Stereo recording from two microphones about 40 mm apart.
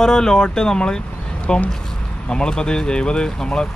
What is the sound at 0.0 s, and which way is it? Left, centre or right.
Speech, centre.